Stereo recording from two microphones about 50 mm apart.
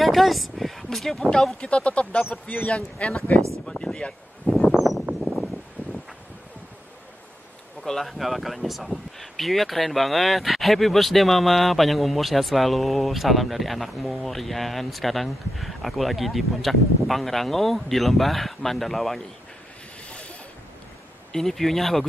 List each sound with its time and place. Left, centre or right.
0.0 s speech: centre
1.3 s speech: centre
4.6 s a sound: centre
7.8 s speech: centre
20.1 s boat: left
21.3 s speech: centre